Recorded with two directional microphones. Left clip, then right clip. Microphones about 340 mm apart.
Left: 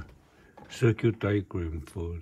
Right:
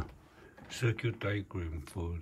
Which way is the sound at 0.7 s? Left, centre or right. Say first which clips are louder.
Left 9 dB; centre.